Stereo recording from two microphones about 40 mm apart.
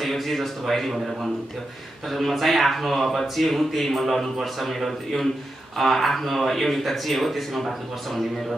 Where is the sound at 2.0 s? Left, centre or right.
Centre.